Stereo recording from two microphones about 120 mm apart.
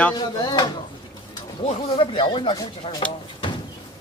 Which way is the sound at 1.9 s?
45° left (ahead or behind).